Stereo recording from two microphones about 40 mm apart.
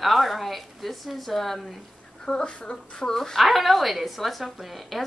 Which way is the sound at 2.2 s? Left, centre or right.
Left.